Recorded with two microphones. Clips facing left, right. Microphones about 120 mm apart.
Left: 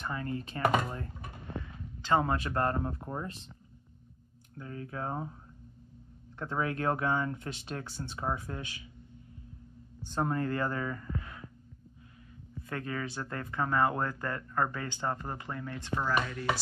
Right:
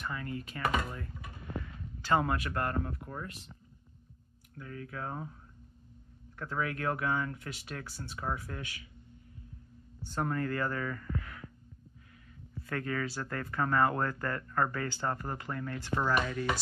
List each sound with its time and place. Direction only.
0.0 s speech: 30° left (ahead or behind)
2.0 s speech: 20° left (ahead or behind)
4.6 s speech: 30° left (ahead or behind)
10.0 s speech: 25° left (ahead or behind)
12.6 s speech: 20° left (ahead or behind)